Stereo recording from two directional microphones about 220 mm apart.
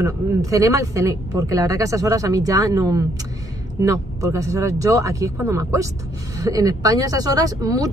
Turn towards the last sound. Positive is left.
turn(degrees=-15)  # may be behind; listen again after turning